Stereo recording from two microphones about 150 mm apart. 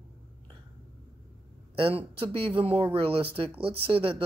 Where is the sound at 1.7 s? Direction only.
35° right (ahead or behind).